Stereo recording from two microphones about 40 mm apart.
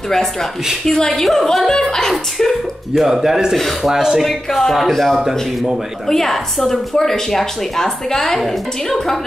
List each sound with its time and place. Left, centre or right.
0.1 s a woman's voice: centre
2.3 s speech: centre
3.1 s a man's voice: centre
4.2 s a woman's voice: centre